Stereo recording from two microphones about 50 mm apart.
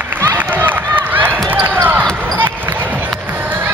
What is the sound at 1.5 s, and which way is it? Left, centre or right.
Basketball bounce, right.